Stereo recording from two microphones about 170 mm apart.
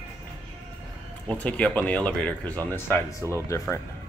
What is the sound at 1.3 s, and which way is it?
Speech, 10° left (ahead or behind).